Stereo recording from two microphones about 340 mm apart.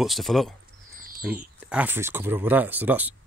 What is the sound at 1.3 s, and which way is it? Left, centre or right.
Speech, centre.